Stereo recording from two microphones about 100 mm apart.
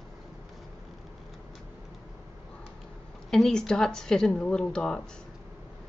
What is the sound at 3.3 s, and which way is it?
A woman's voice, 5° left (ahead or behind).